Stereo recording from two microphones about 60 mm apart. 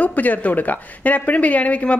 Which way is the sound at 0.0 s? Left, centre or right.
Left.